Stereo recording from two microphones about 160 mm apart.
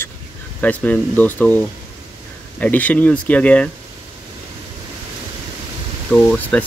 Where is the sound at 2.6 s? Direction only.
10° left (ahead or behind).